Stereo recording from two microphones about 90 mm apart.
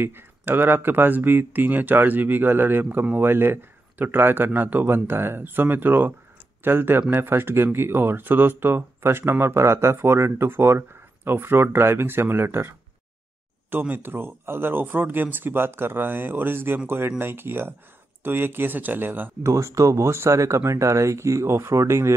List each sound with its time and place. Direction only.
0.0 s speech: 25° right (ahead or behind)
19.5 s speech: 35° right (ahead or behind)